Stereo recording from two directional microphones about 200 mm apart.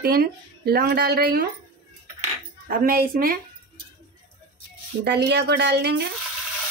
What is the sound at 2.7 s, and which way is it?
Speech, 45° right (ahead or behind).